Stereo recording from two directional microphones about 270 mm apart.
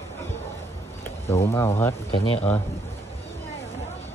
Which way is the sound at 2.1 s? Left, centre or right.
Left.